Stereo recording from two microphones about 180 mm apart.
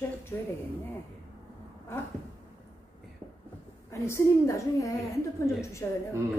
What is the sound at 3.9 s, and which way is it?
A man's voice, 15° left (ahead or behind).